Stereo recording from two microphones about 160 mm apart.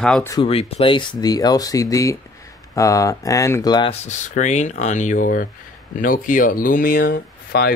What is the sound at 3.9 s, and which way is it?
Speech, 50° left (ahead or behind).